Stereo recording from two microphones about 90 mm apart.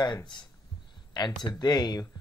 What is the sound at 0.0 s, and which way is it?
Speech, 55° left (ahead or behind).